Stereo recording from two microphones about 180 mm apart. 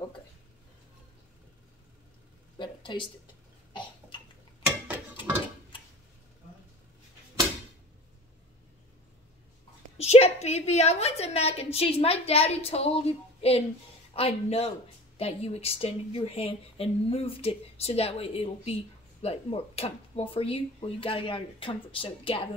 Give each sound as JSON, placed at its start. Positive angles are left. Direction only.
{"t": 2.6, "sound": "a woman's voice", "side_deg": 25}
{"t": 9.9, "sound": "a woman's voice", "side_deg": 35}